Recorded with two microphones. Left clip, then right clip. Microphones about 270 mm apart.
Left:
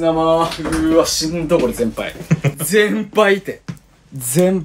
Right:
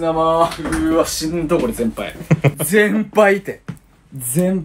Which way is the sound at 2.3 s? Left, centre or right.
Right.